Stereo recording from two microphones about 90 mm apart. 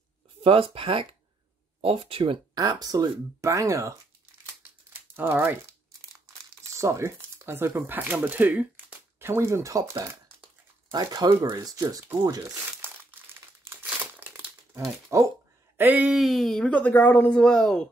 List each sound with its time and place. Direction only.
0.4 s speech: 85° right
1.8 s speech: 90° right
2.5 s speech: 45° right (ahead or behind)
4.6 s crumpling: 25° right (ahead or behind)
6.1 s speech: 35° right (ahead or behind)
10.4 s a sound: 50° right (ahead or behind)
11.5 s speech: 40° right (ahead or behind)
12.8 s crumpling: 25° right (ahead or behind)
15.8 s speech: 20° right (ahead or behind)
16.1 s speech: centre (ahead or behind)
16.6 s speech: 15° left (ahead or behind)